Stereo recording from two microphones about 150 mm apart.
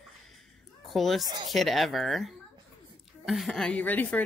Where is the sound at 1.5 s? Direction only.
Centre (ahead or behind).